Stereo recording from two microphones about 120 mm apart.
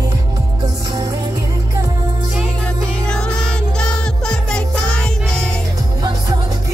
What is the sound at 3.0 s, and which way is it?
Music, 5° left (ahead or behind).